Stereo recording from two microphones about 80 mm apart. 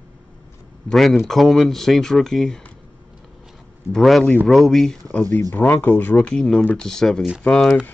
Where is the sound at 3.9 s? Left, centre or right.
Centre.